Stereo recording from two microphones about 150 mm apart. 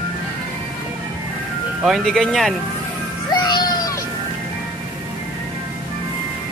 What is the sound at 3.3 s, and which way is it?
Music, 25° left (ahead or behind).